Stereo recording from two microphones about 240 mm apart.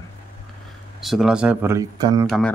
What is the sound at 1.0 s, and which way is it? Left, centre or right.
Speech, centre.